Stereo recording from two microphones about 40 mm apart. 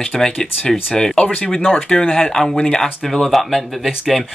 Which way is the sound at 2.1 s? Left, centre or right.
Centre.